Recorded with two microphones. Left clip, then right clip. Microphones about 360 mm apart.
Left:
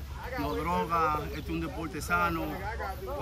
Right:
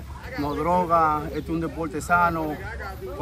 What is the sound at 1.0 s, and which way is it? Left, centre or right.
Speech, centre.